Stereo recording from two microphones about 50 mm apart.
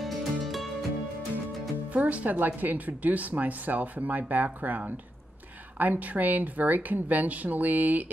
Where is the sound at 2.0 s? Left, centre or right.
Right.